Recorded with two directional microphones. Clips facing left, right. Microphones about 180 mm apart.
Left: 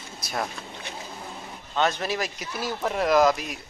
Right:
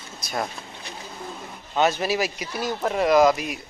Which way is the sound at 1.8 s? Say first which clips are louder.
Right 4 dB; 5° right (ahead or behind).